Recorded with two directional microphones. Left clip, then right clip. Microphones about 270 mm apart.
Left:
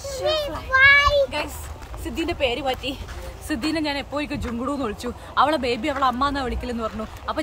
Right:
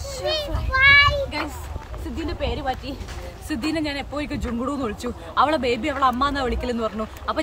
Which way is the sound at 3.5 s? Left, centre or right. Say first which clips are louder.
Left 1 dB; centre.